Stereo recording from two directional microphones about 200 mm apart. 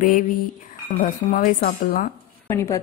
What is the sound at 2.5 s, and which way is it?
Speech, 15° left (ahead or behind).